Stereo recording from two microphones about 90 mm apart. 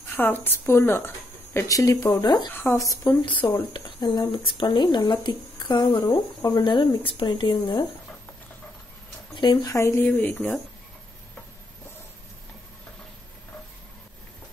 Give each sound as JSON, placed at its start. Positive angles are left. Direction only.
{"t": 0.1, "sound": "speech", "side_deg": 20}
{"t": 1.7, "sound": "speech", "side_deg": 35}
{"t": 2.5, "sound": "speech", "side_deg": 25}
{"t": 2.8, "sound": "speech", "side_deg": 35}
{"t": 3.1, "sound": "speech", "side_deg": 20}
{"t": 3.7, "sound": "a woman's voice", "side_deg": 55}
{"t": 9.3, "sound": "speech", "side_deg": 55}
{"t": 9.7, "sound": "speech", "side_deg": 35}
{"t": 10.0, "sound": "speech", "side_deg": 20}